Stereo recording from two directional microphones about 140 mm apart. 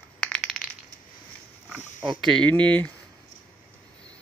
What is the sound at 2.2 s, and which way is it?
Speech, 5° left (ahead or behind).